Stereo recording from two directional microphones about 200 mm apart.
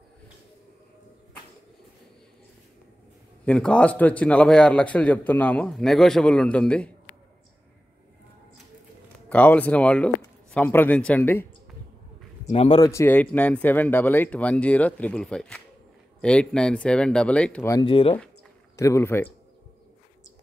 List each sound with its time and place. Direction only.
3.4 s a man's voice: 5° left (ahead or behind)
9.3 s speech: 10° left (ahead or behind)
12.4 s speech: 30° left (ahead or behind)
12.8 s a man's voice: 15° left (ahead or behind)
17.8 s speech: 25° left (ahead or behind)
18.8 s speech: 15° left (ahead or behind)